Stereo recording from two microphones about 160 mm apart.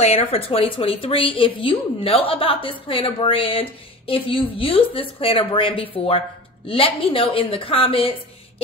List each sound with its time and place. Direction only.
0.0 s a woman's voice: 40° left (ahead or behind)